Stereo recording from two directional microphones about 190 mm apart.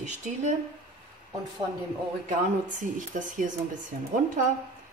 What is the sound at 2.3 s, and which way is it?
Speech, 40° right (ahead or behind).